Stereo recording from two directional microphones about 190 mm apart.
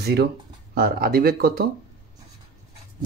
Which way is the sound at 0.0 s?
60° right (ahead or behind).